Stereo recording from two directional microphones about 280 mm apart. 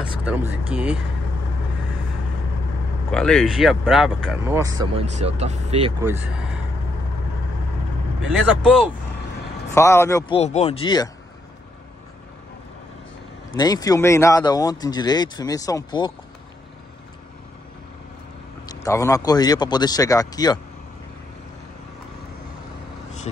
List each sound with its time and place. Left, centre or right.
0.0 s speech: centre
3.1 s speech: centre
8.6 s speech: centre
9.8 s speech: centre
13.6 s speech: centre
18.7 s speech: centre
23.3 s speech: left